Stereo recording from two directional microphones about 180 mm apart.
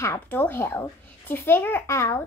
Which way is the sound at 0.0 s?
15° left (ahead or behind).